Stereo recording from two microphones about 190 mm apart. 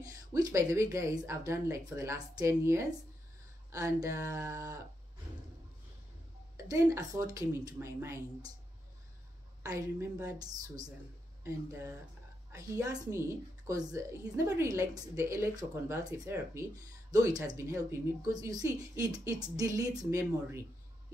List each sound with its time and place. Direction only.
0.0 s a woman's voice: 20° right (ahead or behind)
6.5 s a woman's voice: 15° right (ahead or behind)
9.6 s a woman's voice: 15° right (ahead or behind)